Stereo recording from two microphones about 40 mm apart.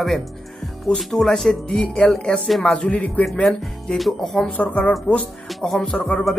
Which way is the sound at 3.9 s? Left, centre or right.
Centre.